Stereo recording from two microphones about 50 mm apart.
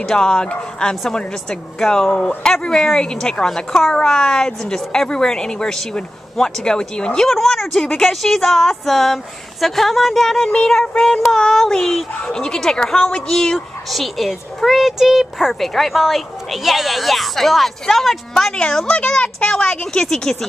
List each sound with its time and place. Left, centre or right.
0.0 s a woman's voice: centre
10.5 s a woman's voice: centre
13.8 s speech: centre
18.9 s speech: left